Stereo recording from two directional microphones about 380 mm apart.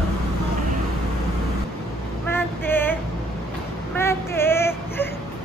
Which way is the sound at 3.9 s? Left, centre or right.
Centre.